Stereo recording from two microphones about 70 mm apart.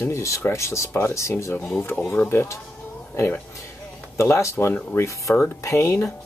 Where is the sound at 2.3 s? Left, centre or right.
Left.